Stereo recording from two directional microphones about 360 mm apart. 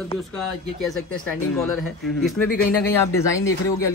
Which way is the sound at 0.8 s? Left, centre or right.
Centre.